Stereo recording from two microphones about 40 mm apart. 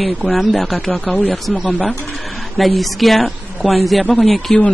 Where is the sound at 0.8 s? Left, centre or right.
Left.